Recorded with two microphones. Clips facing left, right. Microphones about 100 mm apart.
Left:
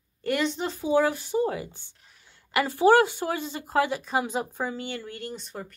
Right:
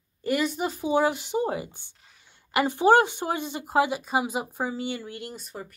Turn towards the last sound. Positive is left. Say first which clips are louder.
# left 1 dB
turn(degrees=-5)  # may be behind; listen again after turning